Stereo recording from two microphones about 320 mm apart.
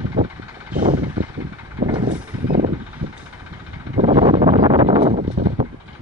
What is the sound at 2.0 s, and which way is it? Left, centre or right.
Vehicle, right.